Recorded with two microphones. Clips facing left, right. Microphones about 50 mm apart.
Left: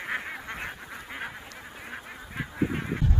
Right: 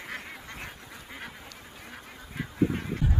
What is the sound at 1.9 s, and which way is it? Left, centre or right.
Goose, left.